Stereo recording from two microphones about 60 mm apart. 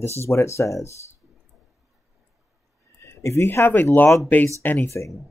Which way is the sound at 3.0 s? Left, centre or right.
Left.